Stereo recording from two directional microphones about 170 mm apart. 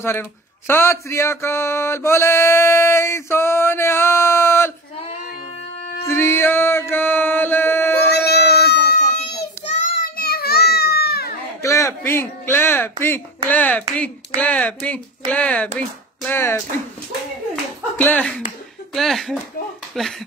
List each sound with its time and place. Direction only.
0.0 s speech: 15° left (ahead or behind)
6.0 s mantra: 15° left (ahead or behind)
8.1 s a sound: 75° left (ahead or behind)
8.9 s a sound: 40° left (ahead or behind)
9.7 s child singing: 45° left (ahead or behind)
10.1 s children playing: 65° left (ahead or behind)
11.6 s a sound: 20° left (ahead or behind)
13.5 s speech: 10° left (ahead or behind)
17.9 s speech: 10° left (ahead or behind)